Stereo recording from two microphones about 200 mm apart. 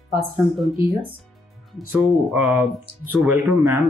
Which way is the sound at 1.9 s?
5° right (ahead or behind).